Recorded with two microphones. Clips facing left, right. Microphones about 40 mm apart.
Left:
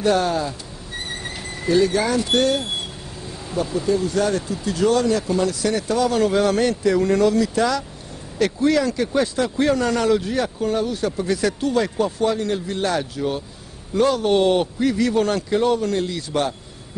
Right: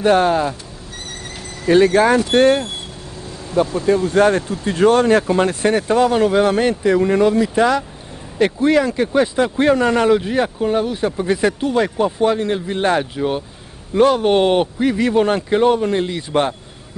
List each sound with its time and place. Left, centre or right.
0.0 s speech: right
0.9 s train: left
1.7 s speech: right
3.7 s speech: right